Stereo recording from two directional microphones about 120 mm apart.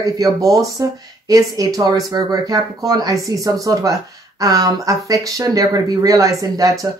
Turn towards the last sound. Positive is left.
turn(degrees=-30)  # may be behind; listen again after turning